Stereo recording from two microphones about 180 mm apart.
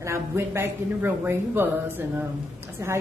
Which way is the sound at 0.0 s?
15° right (ahead or behind).